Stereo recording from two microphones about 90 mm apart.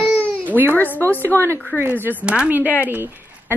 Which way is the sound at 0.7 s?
20° left (ahead or behind).